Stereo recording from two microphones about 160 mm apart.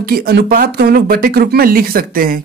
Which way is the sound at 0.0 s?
70° right (ahead or behind).